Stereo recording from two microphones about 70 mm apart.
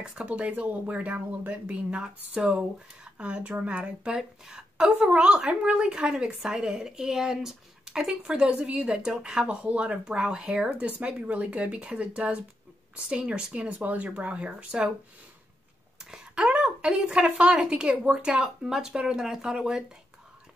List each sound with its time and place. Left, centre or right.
0.0 s a woman's voice: centre
0.3 s a woman's voice: right
16.3 s a woman's voice: centre